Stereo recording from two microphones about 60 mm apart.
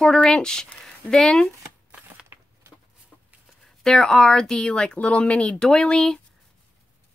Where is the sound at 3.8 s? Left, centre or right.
Centre.